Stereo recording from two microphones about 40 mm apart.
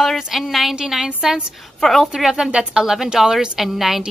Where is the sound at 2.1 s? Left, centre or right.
Centre.